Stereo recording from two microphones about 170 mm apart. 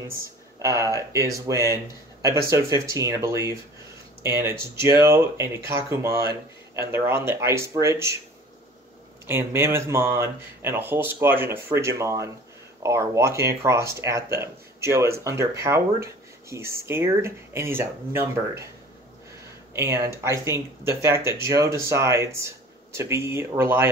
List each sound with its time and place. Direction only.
0.1 s speech: 20° right (ahead or behind)
9.3 s speech: 15° right (ahead or behind)
19.7 s speech: 15° right (ahead or behind)